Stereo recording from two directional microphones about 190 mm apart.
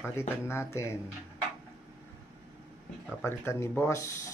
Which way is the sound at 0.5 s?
15° left (ahead or behind).